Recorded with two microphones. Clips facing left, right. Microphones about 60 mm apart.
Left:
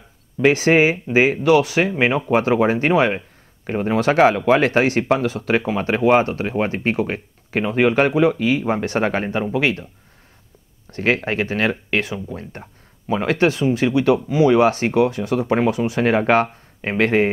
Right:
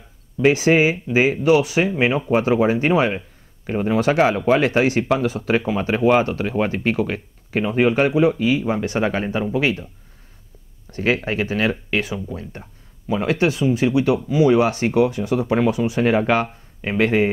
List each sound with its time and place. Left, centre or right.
0.4 s speech: left
10.9 s speech: left